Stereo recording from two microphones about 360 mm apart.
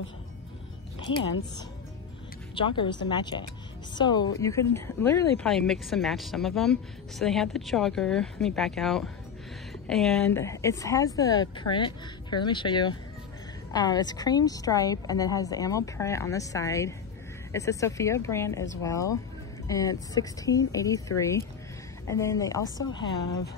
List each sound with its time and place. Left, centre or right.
2.5 s a woman's voice: centre
22.8 s speech: left